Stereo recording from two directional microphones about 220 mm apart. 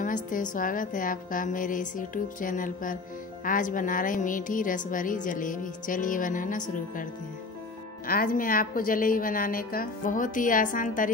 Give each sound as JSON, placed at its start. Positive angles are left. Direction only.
{"t": 0.0, "sound": "speech", "side_deg": 35}
{"t": 8.1, "sound": "speech", "side_deg": 40}